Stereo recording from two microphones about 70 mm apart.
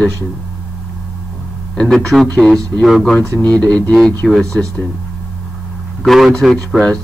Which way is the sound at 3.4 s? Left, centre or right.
Centre.